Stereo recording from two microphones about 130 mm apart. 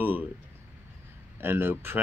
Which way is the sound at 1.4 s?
15° right (ahead or behind).